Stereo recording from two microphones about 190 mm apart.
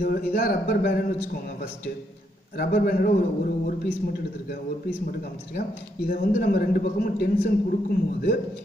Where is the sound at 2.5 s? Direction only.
55° left (ahead or behind).